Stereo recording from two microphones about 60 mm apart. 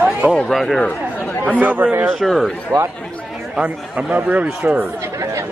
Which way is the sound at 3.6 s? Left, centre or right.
Right.